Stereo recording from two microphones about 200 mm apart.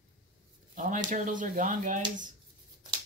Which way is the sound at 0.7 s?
40° right (ahead or behind).